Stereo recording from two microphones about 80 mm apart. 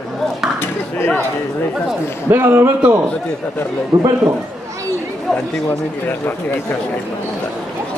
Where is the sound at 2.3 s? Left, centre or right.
Right.